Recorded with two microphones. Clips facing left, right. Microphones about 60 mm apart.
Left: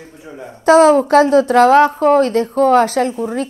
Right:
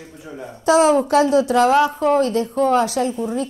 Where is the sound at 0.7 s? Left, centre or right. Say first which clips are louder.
Left 5 dB; left.